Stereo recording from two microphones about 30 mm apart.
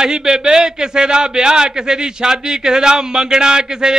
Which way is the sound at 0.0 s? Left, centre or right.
Right.